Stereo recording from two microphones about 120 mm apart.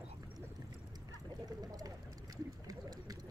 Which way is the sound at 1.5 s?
30° right (ahead or behind).